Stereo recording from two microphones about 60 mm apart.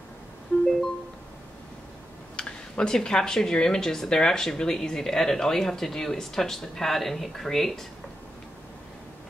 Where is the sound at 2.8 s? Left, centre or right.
Centre.